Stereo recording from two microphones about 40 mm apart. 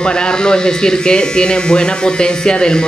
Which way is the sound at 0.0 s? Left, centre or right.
Left.